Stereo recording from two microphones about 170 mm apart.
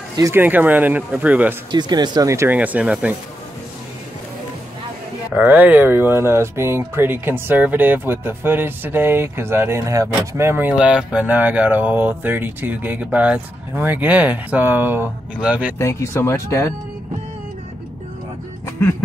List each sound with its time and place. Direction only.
0.2 s speech: 10° right (ahead or behind)
1.7 s speech: 25° right (ahead or behind); by 3.2 s 5° right (ahead or behind)
5.3 s speech: 10° right (ahead or behind)
15.8 s speech: 15° left (ahead or behind)